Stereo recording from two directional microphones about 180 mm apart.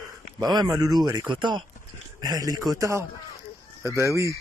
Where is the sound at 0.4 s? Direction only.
20° right (ahead or behind).